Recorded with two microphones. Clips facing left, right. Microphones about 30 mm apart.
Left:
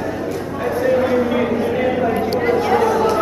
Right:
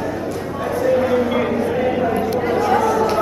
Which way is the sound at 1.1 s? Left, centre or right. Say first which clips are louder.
Left 1 dB; centre.